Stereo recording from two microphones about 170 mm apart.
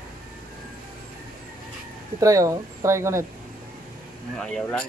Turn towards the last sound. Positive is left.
turn(degrees=5)  # may be behind; listen again after turning